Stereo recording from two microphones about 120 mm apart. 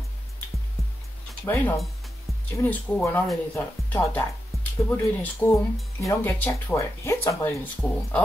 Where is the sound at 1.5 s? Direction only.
25° left (ahead or behind).